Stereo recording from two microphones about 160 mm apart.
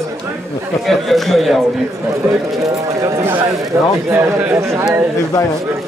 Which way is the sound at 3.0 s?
15° right (ahead or behind).